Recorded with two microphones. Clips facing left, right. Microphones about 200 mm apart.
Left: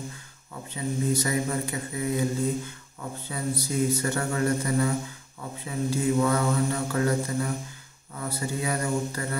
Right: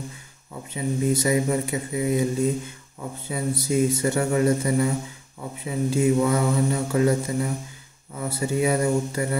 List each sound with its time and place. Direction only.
0.7 s speech: 20° right (ahead or behind)